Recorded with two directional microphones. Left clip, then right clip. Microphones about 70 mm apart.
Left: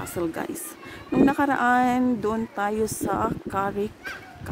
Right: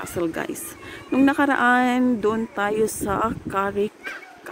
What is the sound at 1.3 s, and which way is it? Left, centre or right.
Speech, right.